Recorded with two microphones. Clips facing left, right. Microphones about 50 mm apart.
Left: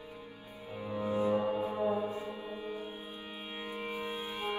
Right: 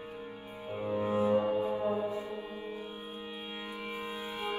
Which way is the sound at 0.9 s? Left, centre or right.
Right.